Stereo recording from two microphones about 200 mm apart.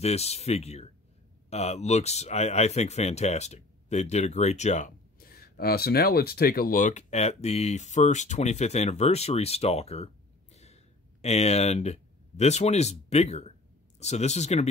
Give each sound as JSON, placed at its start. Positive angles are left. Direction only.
{"t": 0.0, "sound": "speech", "side_deg": 30}